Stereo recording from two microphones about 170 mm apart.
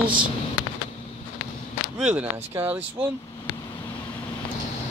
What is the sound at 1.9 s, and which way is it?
Speech, 5° right (ahead or behind).